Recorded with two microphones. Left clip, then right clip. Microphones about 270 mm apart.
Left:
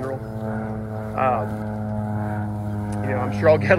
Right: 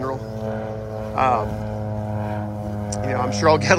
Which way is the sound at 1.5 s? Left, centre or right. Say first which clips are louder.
Right 1 dB; right.